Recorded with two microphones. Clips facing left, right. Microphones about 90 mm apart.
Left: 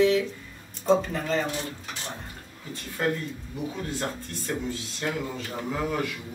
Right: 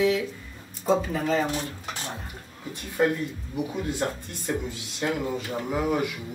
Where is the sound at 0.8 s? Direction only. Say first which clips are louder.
Even; 5° right (ahead or behind).